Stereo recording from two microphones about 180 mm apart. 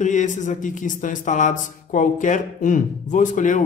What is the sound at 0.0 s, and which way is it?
A man's voice, 45° left (ahead or behind).